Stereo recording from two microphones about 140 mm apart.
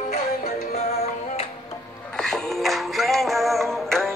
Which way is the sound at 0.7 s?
50° left (ahead or behind).